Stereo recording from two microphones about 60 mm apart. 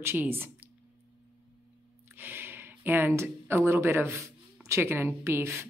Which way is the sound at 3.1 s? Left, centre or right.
Right.